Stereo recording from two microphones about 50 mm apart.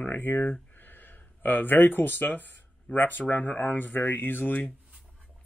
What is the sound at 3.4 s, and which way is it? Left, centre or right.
Speech, left.